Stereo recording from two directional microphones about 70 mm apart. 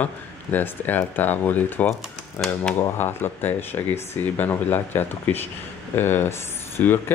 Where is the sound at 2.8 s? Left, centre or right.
Left.